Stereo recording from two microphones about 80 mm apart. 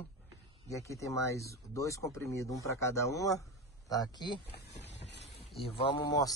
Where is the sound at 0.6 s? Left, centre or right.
Left.